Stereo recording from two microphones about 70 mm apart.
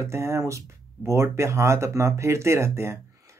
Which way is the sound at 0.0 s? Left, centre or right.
Right.